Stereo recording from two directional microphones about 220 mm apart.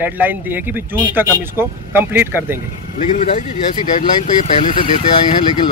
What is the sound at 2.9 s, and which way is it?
Speech, 35° left (ahead or behind).